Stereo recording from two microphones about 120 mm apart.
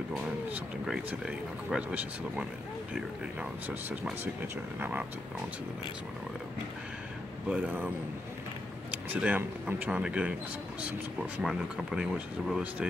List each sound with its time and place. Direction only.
0.5 s speech: 5° right (ahead or behind)
7.4 s speech: 10° right (ahead or behind)
8.9 s speech: 10° right (ahead or behind)
11.7 s speech: 5° right (ahead or behind)